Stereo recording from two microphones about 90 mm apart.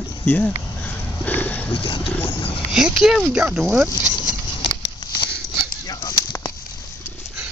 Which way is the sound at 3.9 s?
40° left (ahead or behind).